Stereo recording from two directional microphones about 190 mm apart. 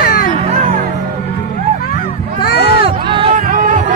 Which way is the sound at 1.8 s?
50° left (ahead or behind).